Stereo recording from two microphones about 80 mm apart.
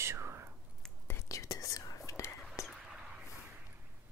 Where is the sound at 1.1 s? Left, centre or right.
Left.